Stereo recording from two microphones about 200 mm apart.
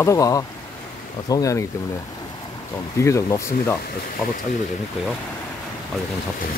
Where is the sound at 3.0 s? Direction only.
15° left (ahead or behind).